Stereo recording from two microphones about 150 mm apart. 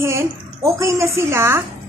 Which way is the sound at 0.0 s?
20° right (ahead or behind).